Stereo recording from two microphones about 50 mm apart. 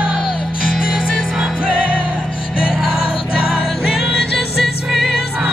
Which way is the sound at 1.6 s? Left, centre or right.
Right.